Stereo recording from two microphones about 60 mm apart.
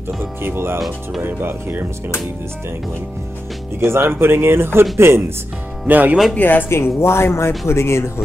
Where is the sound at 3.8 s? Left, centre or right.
Right.